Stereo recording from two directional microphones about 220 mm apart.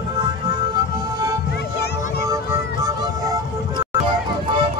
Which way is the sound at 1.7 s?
50° left (ahead or behind).